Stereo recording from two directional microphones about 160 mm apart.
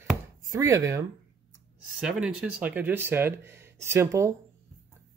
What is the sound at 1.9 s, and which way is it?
Speech, 5° right (ahead or behind).